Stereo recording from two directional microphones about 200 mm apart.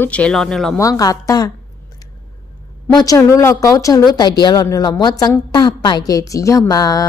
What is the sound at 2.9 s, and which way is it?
A woman's voice, 20° left (ahead or behind).